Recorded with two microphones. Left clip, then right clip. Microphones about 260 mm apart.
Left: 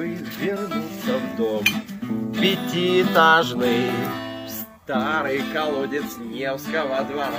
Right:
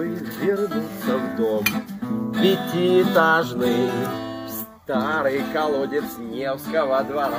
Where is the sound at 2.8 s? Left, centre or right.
Left.